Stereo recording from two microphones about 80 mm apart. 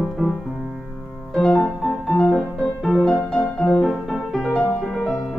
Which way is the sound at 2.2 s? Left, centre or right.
Centre.